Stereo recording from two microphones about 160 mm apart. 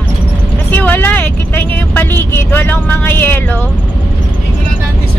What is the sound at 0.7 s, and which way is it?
Vehicle, 10° left (ahead or behind).